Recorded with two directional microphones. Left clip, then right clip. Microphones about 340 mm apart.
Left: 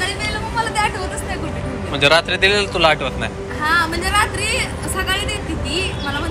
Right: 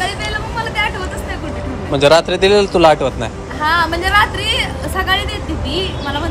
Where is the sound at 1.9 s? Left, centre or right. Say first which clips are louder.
Right 4 dB; centre.